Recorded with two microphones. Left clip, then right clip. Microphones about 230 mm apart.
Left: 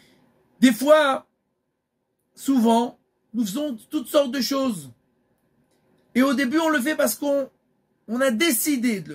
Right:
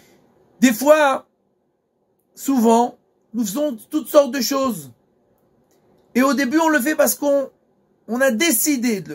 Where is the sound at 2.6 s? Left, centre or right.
Centre.